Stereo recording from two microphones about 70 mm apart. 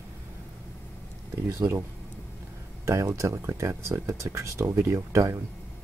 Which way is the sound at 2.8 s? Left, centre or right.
Right.